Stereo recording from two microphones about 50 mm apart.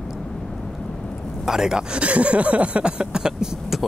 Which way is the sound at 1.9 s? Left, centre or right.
Right.